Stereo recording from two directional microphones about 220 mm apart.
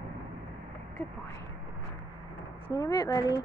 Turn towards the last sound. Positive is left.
turn(degrees=20)  # may be behind; listen again after turning